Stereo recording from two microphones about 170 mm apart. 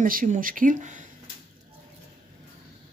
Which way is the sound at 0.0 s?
55° right (ahead or behind).